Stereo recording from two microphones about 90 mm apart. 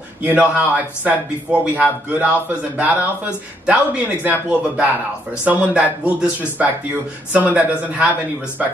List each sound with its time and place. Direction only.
0.2 s a man's voice: 20° right (ahead or behind)